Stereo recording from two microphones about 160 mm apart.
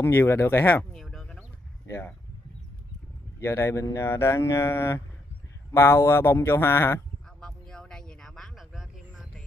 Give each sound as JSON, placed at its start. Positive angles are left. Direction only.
{"t": 0.0, "sound": "speech", "side_deg": 15}
{"t": 1.9, "sound": "speech", "side_deg": 15}
{"t": 3.3, "sound": "speech", "side_deg": 15}
{"t": 7.3, "sound": "a sound", "side_deg": 5}